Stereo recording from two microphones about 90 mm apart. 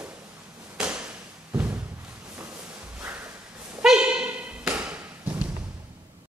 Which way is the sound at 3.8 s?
10° right (ahead or behind).